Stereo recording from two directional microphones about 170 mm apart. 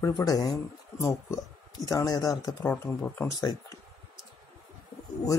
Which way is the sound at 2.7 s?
10° left (ahead or behind).